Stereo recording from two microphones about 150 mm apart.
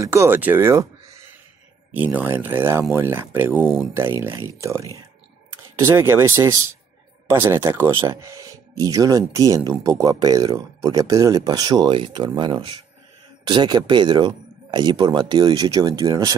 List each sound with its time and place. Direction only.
0.0 s speech: 20° right (ahead or behind)
2.0 s speech: 15° right (ahead or behind)